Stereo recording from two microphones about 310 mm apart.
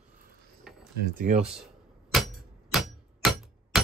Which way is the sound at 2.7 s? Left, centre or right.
Centre.